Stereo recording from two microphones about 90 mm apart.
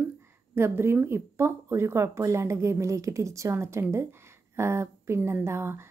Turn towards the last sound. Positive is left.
turn(degrees=-30)  # may be behind; listen again after turning